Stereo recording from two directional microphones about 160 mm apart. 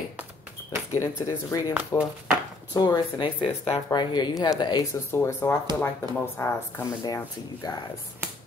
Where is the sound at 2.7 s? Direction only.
25° left (ahead or behind).